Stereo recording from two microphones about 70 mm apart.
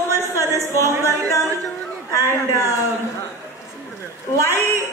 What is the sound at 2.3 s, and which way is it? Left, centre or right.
Speech, left.